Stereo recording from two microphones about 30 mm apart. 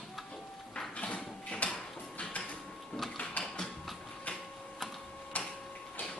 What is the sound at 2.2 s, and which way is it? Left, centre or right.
Printer, left.